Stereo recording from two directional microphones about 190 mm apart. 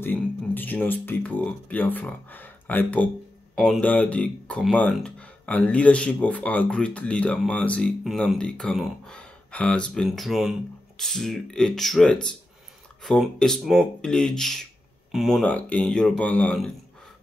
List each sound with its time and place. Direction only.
0.0 s speech: 10° left (ahead or behind)